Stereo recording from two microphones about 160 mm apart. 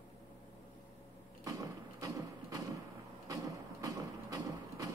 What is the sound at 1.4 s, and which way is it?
Mechanisms, 25° right (ahead or behind).